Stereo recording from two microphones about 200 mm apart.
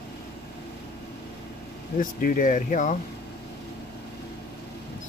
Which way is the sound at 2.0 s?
45° left (ahead or behind).